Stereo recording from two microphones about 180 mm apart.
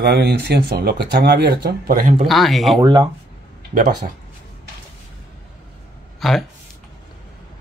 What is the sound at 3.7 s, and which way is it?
Speech, 45° right (ahead or behind).